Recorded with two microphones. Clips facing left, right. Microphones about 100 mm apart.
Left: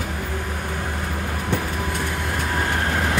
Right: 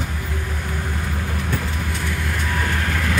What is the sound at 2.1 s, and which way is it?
Vehicle, 35° left (ahead or behind).